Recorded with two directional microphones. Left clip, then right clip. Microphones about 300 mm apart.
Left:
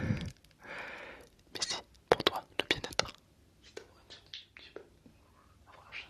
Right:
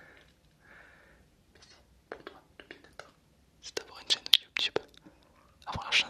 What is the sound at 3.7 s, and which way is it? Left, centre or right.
Whispering, right.